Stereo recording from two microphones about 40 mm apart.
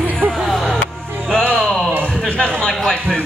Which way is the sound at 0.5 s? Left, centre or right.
Centre.